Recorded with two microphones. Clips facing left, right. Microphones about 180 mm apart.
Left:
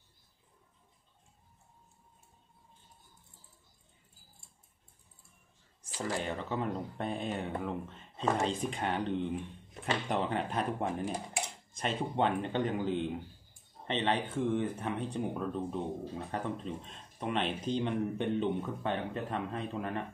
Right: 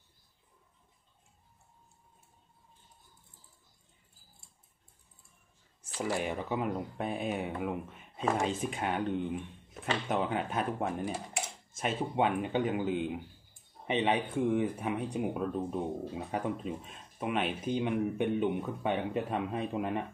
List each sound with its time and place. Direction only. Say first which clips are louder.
5.9 s speech: right 2 dB; 10° right (ahead or behind)